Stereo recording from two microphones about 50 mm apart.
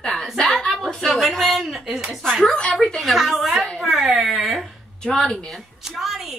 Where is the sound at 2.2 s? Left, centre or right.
Centre.